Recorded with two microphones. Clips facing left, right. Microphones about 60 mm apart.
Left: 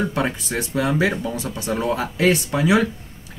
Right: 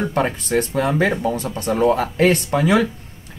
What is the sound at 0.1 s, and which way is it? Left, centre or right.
Speech, right.